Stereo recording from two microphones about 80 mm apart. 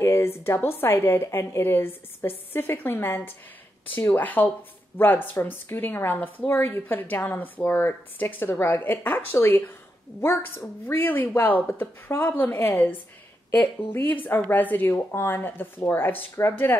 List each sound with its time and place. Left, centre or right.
0.0 s a woman's voice: left
10.9 s a woman's voice: left
14.0 s a woman's voice: left